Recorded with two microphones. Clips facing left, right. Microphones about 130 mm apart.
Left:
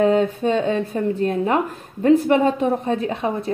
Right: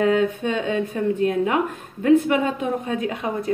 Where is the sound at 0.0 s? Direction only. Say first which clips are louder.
Left 2 dB; 30° left (ahead or behind).